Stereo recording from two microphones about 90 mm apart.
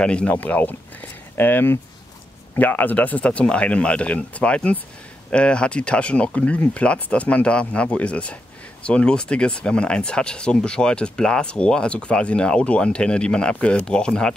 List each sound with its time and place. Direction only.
0.0 s speech: 10° left (ahead or behind)